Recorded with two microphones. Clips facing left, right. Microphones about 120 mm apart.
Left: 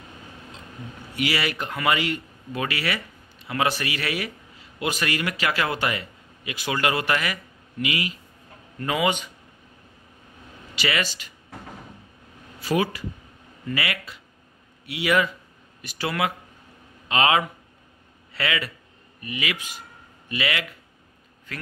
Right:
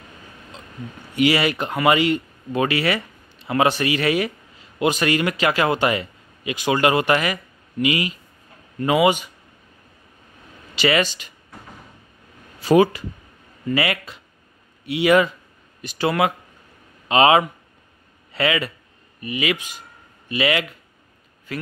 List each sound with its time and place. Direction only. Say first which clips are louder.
1.1 s a man's voice: right 7 dB; 20° right (ahead or behind)
10.8 s speech: right 7 dB; 25° right (ahead or behind)
12.6 s speech: right 9 dB; 25° right (ahead or behind)